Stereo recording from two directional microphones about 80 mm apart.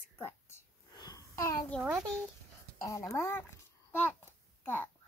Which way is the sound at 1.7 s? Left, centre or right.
Centre.